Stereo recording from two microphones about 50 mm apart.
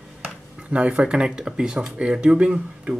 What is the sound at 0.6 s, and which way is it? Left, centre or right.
Speech, right.